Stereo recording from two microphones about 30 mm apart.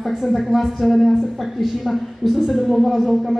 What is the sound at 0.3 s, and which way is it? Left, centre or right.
A woman's voice, centre.